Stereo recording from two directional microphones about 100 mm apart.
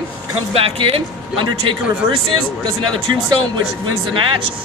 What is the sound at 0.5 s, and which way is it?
Speech, 70° right (ahead or behind).